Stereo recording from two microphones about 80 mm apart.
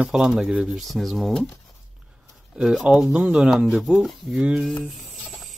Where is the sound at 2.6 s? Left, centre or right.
Centre.